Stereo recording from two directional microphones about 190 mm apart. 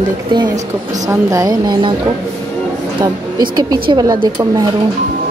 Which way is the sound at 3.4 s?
20° right (ahead or behind).